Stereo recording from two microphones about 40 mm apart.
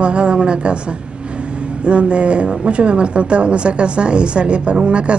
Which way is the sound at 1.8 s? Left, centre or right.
Right.